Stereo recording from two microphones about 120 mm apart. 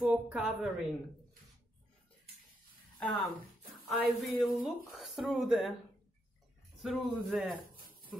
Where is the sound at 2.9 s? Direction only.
5° left (ahead or behind).